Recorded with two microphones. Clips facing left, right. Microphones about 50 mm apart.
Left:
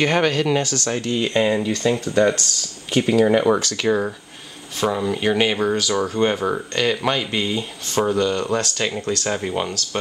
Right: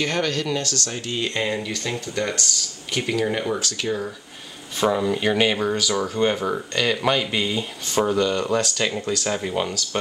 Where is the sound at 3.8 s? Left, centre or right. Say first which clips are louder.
Left 7 dB; left.